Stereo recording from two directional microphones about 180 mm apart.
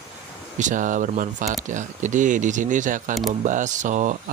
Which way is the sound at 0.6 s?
45° right (ahead or behind).